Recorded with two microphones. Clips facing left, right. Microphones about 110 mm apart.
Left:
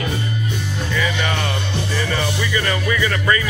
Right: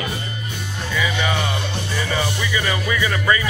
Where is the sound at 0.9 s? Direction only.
10° right (ahead or behind).